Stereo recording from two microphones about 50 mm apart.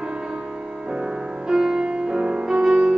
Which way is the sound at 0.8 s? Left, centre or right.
Centre.